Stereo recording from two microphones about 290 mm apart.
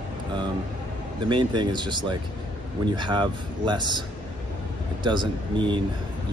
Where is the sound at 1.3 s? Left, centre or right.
Centre.